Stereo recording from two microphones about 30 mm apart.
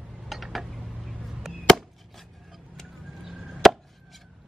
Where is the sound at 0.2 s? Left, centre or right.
Centre.